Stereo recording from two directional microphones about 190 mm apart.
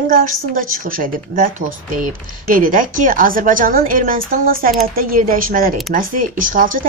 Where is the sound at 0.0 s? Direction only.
45° right (ahead or behind).